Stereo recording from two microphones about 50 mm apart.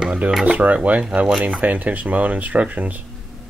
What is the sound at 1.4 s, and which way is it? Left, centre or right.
Speech, right.